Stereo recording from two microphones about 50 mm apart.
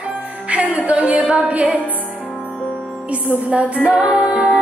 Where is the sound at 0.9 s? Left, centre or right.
Right.